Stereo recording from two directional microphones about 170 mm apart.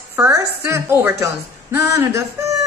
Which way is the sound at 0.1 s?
15° right (ahead or behind).